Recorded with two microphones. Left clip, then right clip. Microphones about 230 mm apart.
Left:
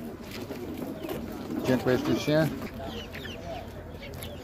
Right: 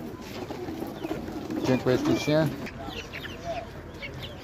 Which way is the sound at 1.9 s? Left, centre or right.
Centre.